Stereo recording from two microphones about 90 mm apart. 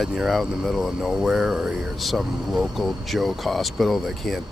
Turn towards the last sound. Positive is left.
turn(degrees=0)  # may be behind; listen again after turning